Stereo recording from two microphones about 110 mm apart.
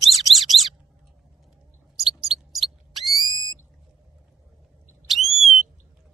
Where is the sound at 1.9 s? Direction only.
5° right (ahead or behind).